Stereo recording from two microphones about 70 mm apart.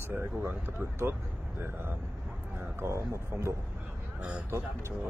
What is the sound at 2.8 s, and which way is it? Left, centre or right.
Speech, right.